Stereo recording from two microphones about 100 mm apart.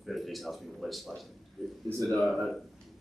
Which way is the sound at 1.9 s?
30° right (ahead or behind).